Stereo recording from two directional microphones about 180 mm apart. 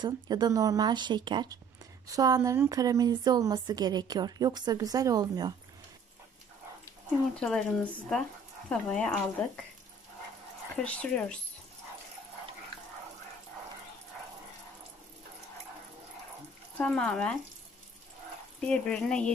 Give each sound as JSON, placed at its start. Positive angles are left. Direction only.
{"t": 0.0, "sound": "speech", "side_deg": -25}
{"t": 7.3, "sound": "speech", "side_deg": 5}
{"t": 10.8, "sound": "speech", "side_deg": 5}
{"t": 16.7, "sound": "speech", "side_deg": 5}
{"t": 18.6, "sound": "speech", "side_deg": 5}